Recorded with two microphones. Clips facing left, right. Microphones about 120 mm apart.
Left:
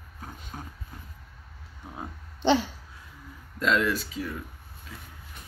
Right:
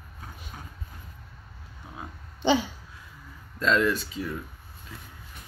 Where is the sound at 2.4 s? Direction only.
5° right (ahead or behind).